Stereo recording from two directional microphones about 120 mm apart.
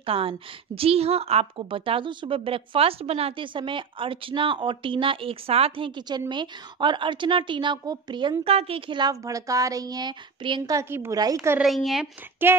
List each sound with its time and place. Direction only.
0.0 s a woman's voice: 50° right (ahead or behind)
8.5 s a woman's voice: 55° right (ahead or behind)
9.1 s speech: 30° right (ahead or behind)
10.7 s speech: 20° right (ahead or behind)
11.6 s speech: centre (ahead or behind)
12.5 s speech: 20° right (ahead or behind)